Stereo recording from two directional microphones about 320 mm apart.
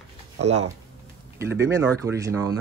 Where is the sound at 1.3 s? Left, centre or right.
Centre.